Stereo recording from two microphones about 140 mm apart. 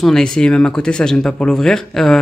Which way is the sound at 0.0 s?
5° left (ahead or behind).